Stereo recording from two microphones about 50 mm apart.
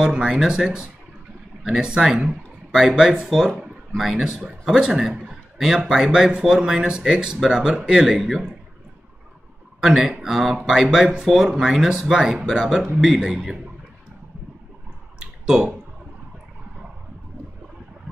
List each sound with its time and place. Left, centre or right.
0.0 s speech: centre
5.3 s a sound: centre
6.1 s speech: centre
9.8 s speech: centre
15.1 s clicking: centre